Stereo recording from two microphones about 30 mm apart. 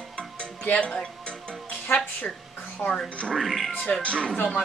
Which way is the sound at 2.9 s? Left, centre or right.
Left.